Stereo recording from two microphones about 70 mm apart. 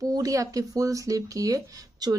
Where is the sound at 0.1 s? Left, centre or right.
Right.